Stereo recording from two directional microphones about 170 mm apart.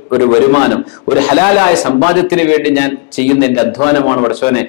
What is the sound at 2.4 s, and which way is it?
A man's voice, 10° left (ahead or behind).